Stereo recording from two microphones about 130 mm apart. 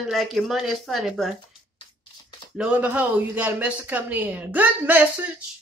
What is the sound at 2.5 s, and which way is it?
Speech, 10° right (ahead or behind).